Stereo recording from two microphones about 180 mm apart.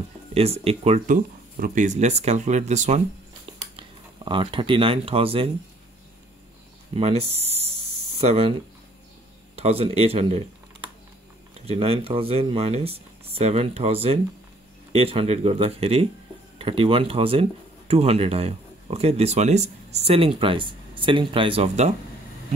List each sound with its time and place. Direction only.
0.3 s speech: 35° right (ahead or behind)
3.7 s speech: 25° right (ahead or behind)
7.0 s speech: 35° right (ahead or behind)
9.6 s speech: 35° right (ahead or behind)
11.6 s speech: 30° right (ahead or behind)